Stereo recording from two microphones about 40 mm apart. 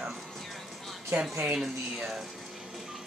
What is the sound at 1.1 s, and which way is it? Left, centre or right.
Speech, right.